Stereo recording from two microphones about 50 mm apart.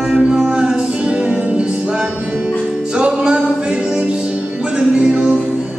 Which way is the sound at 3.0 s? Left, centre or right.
Centre.